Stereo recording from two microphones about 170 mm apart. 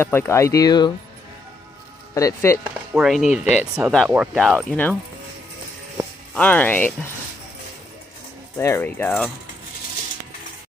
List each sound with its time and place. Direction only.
0.0 s speech: 15° left (ahead or behind)
2.1 s speech: 20° left (ahead or behind)
2.9 s speech: centre (ahead or behind)
6.3 s speech: 10° left (ahead or behind)
8.5 s speech: 15° left (ahead or behind)